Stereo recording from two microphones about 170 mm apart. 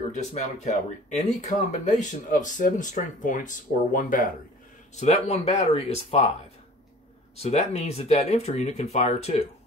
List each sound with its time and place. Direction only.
0.1 s speech: 45° left (ahead or behind)
4.9 s speech: 40° left (ahead or behind)
7.3 s speech: 40° left (ahead or behind)